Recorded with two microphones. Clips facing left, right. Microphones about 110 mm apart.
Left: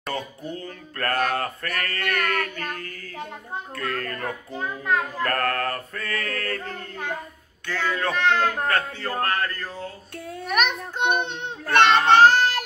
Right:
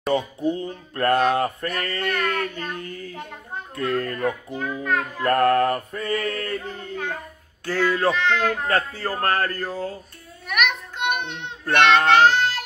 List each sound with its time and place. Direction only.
0.1 s music: 20° right (ahead or behind)
4.6 s a child's voice: 20° left (ahead or behind)
5.2 s music: 25° right (ahead or behind)
7.6 s a sound: 35° right (ahead or behind)
10.4 s child singing: 35° left (ahead or behind)